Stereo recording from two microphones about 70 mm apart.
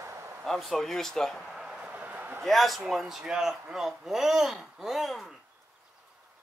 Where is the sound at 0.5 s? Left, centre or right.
Centre.